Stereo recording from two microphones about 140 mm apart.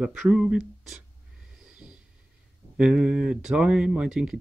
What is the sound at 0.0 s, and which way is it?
Speech, 5° right (ahead or behind).